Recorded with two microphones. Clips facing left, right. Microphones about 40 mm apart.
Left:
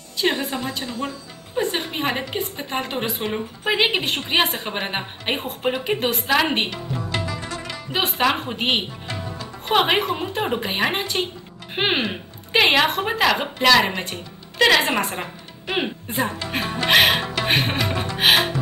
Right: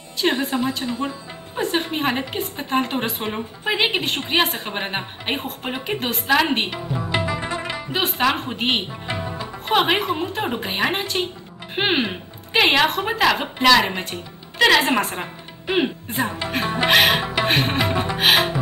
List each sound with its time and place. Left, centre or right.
0.2 s a woman's voice: centre
1.6 s a woman's voice: centre
6.7 s music: centre
7.9 s a woman's voice: centre
9.0 s music: centre
9.7 s a woman's voice: centre